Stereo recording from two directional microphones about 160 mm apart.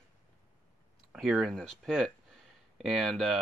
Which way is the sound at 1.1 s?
Centre (ahead or behind).